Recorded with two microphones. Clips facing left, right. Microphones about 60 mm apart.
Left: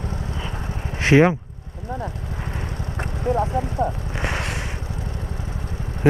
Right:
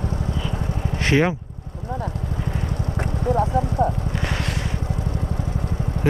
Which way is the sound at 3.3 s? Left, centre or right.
Left.